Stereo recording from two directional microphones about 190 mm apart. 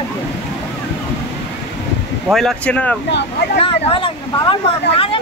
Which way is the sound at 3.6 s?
30° left (ahead or behind).